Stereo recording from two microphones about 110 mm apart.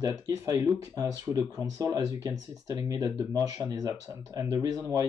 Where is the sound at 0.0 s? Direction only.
30° right (ahead or behind).